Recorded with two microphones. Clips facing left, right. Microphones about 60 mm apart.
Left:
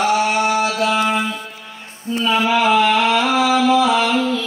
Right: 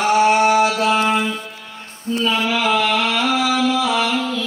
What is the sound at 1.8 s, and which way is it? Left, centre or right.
Music, centre.